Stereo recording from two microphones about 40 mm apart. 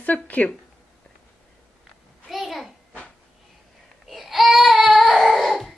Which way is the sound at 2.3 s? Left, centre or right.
Centre.